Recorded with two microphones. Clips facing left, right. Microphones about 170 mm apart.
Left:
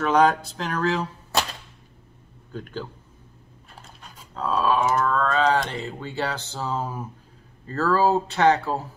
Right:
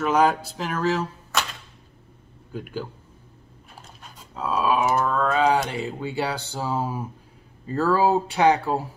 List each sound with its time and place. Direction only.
0.0 s speech: 5° right (ahead or behind)
1.3 s a sound: 35° left (ahead or behind)
2.5 s speech: 10° right (ahead or behind)
4.0 s speech: 5° right (ahead or behind)